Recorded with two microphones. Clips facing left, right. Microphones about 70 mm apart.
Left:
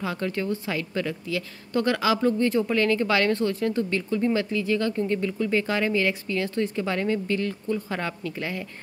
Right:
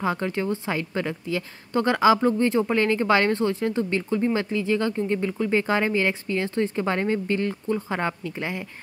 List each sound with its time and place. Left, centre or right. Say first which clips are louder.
0.0 s a woman's voice: right 3 dB; right